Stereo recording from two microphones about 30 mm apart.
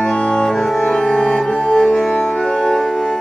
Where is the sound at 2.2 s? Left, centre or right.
Left.